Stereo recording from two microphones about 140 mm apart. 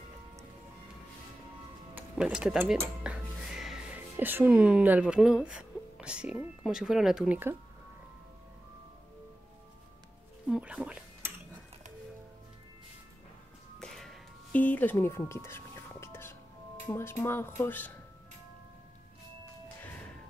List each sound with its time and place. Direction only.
2.0 s speech: 10° right (ahead or behind)
10.5 s speech: 5° right (ahead or behind)
13.7 s a sound: 5° left (ahead or behind)
16.8 s speech: 15° left (ahead or behind)